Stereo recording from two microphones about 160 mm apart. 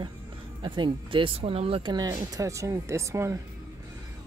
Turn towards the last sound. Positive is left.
turn(degrees=-20)  # may be behind; listen again after turning